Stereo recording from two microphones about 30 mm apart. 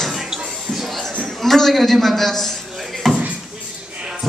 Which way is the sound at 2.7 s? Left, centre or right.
Centre.